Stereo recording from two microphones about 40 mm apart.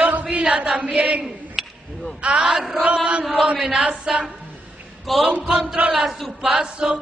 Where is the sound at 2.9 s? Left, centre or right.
Right.